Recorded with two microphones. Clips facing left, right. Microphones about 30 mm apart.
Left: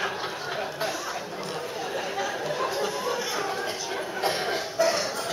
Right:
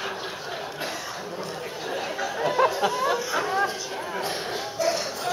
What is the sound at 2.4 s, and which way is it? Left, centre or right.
Chatter, right.